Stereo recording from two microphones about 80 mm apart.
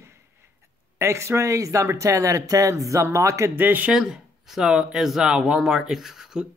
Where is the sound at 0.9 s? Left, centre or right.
Right.